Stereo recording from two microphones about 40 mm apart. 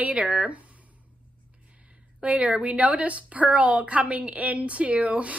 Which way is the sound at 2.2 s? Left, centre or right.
Right.